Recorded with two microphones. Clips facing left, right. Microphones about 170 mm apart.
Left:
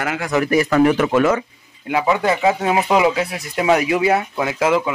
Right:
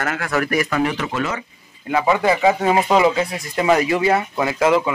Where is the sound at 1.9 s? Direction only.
5° left (ahead or behind).